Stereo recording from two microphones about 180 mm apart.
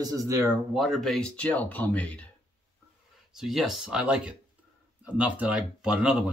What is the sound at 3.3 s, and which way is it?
Speech, centre (ahead or behind).